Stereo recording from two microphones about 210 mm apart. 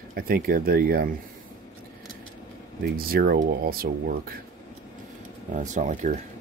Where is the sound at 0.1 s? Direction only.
45° right (ahead or behind).